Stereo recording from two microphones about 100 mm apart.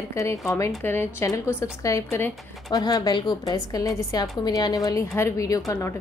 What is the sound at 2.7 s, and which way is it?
A woman's voice, 40° left (ahead or behind).